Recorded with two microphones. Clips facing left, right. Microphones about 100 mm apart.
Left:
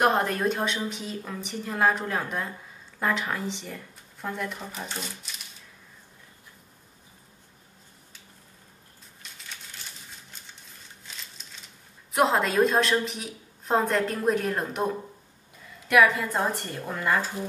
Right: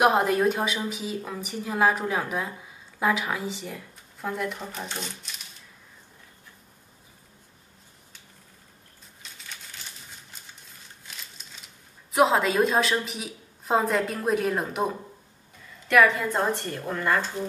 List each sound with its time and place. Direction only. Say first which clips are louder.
0.0 s a woman's voice: right 3 dB; 5° right (ahead or behind)
9.2 s a sound: right 1 dB; centre (ahead or behind)
12.1 s a woman's voice: right 2 dB; centre (ahead or behind)